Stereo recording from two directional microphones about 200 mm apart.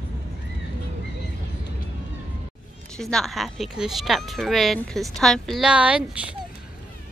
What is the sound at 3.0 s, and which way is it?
Speech, centre (ahead or behind).